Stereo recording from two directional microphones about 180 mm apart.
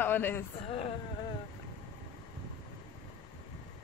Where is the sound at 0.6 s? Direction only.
30° left (ahead or behind).